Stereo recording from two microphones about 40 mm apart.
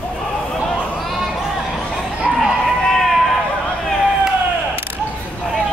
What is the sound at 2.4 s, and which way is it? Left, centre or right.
Run, centre.